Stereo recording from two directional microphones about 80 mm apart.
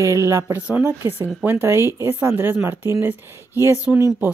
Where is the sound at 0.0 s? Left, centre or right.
Right.